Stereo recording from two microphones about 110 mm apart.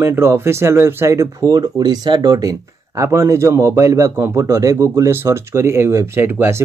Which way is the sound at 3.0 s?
25° right (ahead or behind).